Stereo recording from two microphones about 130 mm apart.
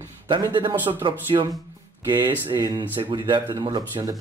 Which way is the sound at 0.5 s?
40° right (ahead or behind).